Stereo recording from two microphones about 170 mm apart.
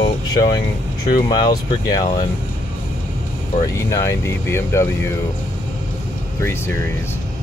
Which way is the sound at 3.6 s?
20° left (ahead or behind).